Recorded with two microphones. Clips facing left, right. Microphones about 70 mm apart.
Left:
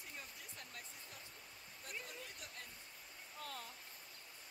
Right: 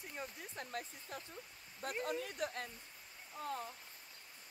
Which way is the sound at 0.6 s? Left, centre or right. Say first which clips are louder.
Right 12 dB; right.